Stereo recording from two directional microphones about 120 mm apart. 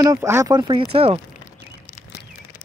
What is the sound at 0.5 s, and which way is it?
Speech, 40° right (ahead or behind).